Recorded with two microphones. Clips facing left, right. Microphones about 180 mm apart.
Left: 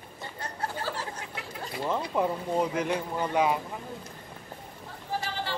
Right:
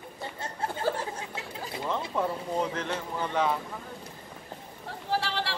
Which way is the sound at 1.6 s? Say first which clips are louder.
Left 2 dB; 5° left (ahead or behind).